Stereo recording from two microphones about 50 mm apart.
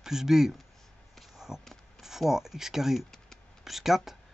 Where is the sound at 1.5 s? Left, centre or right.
Centre.